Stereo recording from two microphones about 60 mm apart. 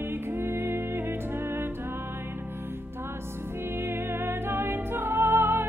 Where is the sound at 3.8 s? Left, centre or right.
Right.